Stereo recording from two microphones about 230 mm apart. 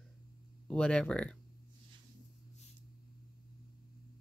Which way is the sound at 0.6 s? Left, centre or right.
Centre.